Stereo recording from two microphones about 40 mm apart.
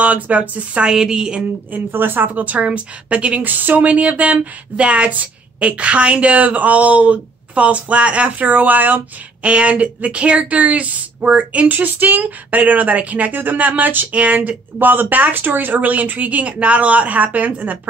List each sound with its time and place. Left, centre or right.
0.0 s speech: right
0.7 s a woman's voice: centre
1.9 s speech: right
2.4 s speech: right
3.4 s speech: right
9.4 s speech: right
14.1 s speech: right
14.8 s speech: right